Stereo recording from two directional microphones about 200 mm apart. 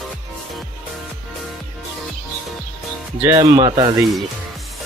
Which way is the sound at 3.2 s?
15° right (ahead or behind).